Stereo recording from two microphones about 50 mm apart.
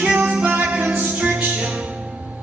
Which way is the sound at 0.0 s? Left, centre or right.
Right.